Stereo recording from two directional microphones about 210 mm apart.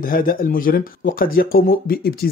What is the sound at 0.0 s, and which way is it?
Speech, 40° left (ahead or behind).